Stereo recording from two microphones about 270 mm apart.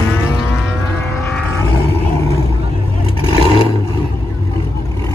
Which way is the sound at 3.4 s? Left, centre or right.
Centre.